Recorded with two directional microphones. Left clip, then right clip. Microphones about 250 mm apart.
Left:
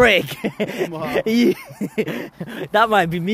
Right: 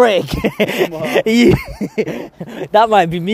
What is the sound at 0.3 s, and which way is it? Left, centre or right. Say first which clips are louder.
Speech: right 8 dB; right.